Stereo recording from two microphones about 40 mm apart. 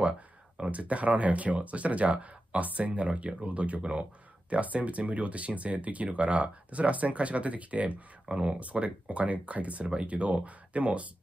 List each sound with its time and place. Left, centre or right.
0.7 s speech: right
8.3 s speech: right